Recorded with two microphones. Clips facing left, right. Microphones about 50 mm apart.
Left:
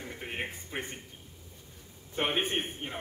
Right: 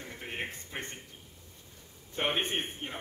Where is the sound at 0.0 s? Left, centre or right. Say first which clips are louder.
Left 1 dB; centre.